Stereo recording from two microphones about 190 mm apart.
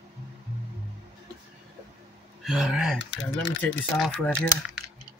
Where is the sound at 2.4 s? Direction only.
Centre (ahead or behind).